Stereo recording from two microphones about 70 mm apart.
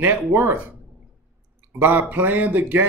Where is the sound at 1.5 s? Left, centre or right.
Right.